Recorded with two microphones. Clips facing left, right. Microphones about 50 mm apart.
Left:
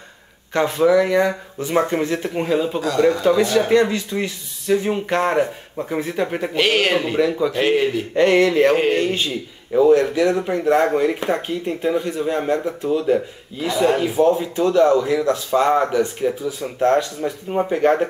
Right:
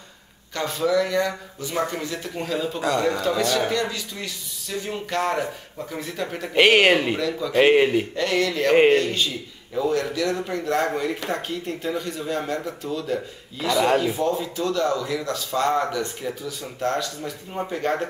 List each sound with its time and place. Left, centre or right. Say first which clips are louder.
0.5 s speech: left 7 dB; left
3.7 s speech: left 9 dB; left
6.5 s speech: right 3 dB; centre
7.2 s speech: left 8 dB; left
7.5 s a man's voice: right 2 dB; centre
8.1 s speech: left 8 dB; left